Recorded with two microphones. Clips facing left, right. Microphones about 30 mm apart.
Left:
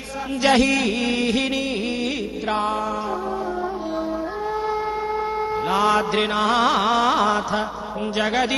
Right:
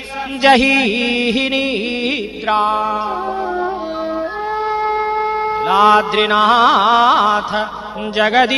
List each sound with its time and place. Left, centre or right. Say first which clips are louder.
0.4 s music: right 7 dB; right
5.7 s music: right 9 dB; right
6.1 s music: right 8 dB; right
8.2 s speech: right 9 dB; right